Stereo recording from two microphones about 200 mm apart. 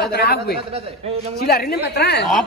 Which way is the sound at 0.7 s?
30° right (ahead or behind).